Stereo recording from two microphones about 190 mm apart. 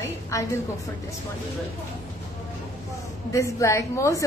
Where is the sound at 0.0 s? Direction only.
15° left (ahead or behind).